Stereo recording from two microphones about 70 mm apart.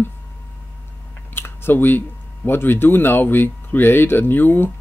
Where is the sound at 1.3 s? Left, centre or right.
Left.